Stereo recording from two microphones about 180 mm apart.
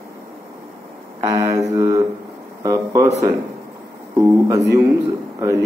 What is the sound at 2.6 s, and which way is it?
Speech, 15° right (ahead or behind).